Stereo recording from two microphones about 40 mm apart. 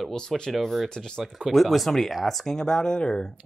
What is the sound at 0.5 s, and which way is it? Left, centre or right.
Speech, centre.